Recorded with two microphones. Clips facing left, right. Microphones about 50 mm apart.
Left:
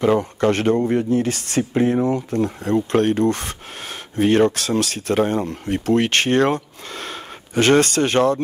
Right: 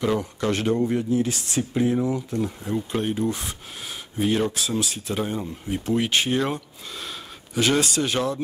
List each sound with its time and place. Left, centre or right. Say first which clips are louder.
0.2 s speech: left 6 dB; left
1.7 s speech: left 4 dB; left